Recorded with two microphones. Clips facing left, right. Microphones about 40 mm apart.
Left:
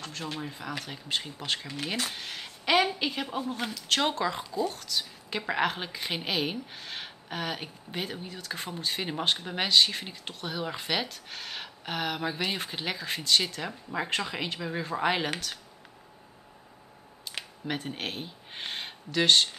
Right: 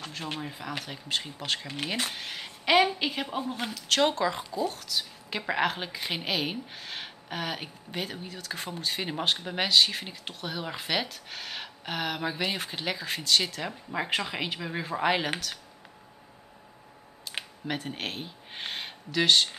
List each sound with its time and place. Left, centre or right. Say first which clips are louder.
0.0 s a woman's voice: right 1 dB; centre
17.6 s speech: even; centre